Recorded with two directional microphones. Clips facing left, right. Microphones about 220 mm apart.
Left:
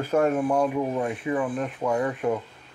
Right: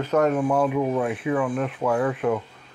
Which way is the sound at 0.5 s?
5° right (ahead or behind).